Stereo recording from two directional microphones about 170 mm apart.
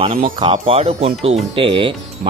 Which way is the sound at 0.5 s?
35° right (ahead or behind).